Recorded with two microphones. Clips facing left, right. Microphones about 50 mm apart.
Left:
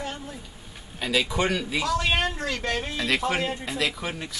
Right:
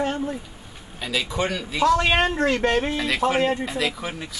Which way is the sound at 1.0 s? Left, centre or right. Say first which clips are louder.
Left 1 dB; centre.